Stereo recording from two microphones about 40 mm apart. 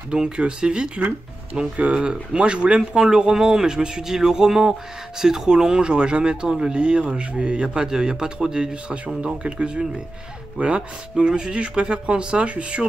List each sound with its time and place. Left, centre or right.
0.1 s speech: right
8.9 s speech: right